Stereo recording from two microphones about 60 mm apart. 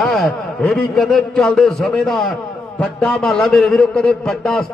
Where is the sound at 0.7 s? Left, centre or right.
Centre.